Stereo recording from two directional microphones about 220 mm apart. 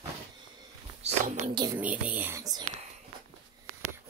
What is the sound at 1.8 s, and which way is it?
Whispering, 5° right (ahead or behind).